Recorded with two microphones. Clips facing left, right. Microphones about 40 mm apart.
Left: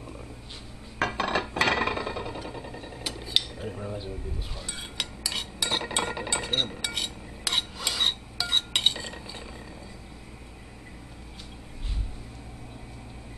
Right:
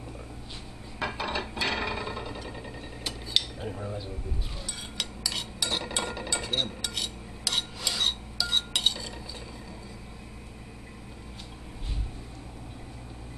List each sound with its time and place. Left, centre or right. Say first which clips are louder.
0.9 s dishes: left 5 dB; left
1.5 s a sound: left 5 dB; left
2.0 s a sound: left 3 dB; centre
3.6 s speech: even; centre
4.9 s stir: left 1 dB; centre
6.7 s cutlery: left 2 dB; centre
8.4 s stir: left 1 dB; left